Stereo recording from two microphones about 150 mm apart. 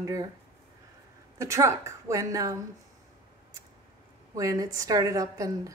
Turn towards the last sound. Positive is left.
turn(degrees=-20)  # may be behind; listen again after turning